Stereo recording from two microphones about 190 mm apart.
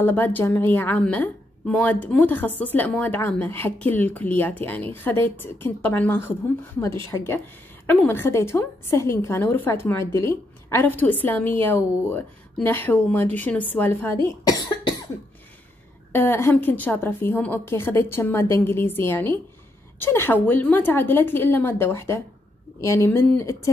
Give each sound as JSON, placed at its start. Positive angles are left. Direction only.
{"t": 0.0, "sound": "a woman's voice", "side_deg": 10}
{"t": 16.1, "sound": "a woman's voice", "side_deg": 10}